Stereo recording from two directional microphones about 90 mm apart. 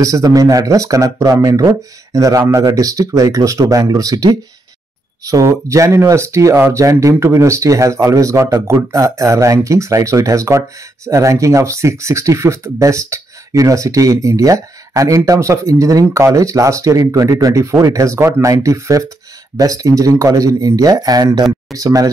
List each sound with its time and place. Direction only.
0.0 s speech: 40° right (ahead or behind)